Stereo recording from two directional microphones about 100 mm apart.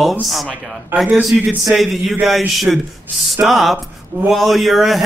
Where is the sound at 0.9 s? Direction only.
20° right (ahead or behind).